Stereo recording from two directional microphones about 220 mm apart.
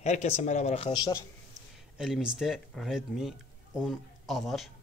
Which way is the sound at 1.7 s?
Centre (ahead or behind).